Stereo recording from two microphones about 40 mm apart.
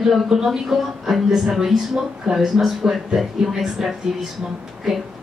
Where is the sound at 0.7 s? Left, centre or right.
Centre.